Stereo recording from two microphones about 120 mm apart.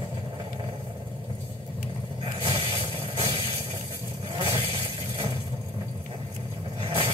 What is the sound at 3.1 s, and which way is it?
Vehicle, 45° right (ahead or behind).